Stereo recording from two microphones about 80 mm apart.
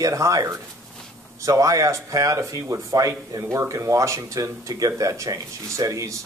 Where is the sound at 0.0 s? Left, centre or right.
Right.